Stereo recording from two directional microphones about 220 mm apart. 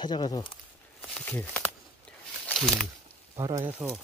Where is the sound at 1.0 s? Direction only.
5° left (ahead or behind).